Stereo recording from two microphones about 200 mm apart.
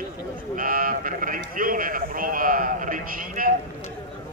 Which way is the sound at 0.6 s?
45° right (ahead or behind).